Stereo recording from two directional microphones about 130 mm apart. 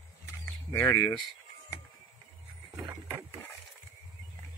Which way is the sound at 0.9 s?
30° left (ahead or behind).